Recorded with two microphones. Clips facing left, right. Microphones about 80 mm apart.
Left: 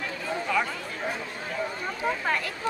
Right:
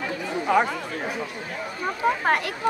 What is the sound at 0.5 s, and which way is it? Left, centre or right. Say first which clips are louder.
Chatter: right 7 dB; right.